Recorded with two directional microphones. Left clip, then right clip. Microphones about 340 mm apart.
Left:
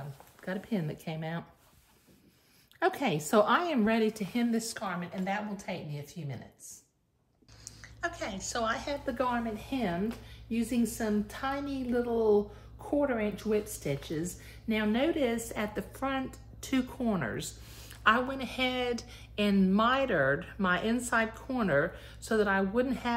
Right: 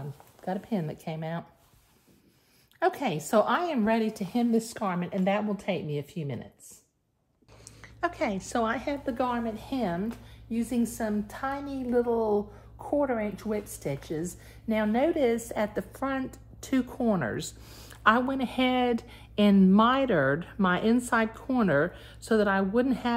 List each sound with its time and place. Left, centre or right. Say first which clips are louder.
0.0 s speech: right 5 dB; centre
2.8 s a woman's voice: right 2 dB; centre
7.6 s a woman's voice: right 5 dB; centre